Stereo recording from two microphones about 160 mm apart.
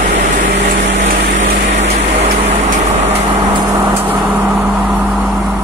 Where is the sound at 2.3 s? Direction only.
50° right (ahead or behind).